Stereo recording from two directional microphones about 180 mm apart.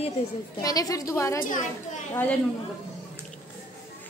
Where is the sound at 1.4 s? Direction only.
45° left (ahead or behind).